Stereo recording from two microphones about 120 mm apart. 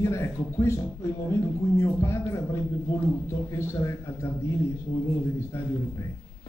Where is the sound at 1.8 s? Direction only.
25° left (ahead or behind).